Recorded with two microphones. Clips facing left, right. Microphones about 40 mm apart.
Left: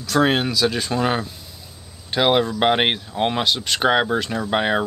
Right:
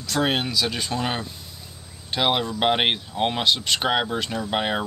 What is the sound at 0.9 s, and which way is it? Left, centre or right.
Speech, centre.